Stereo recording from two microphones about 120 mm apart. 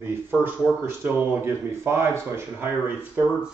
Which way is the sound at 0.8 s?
20° right (ahead or behind).